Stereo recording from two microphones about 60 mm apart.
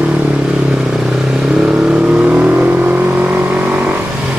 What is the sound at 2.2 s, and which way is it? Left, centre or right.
Vehicle, right.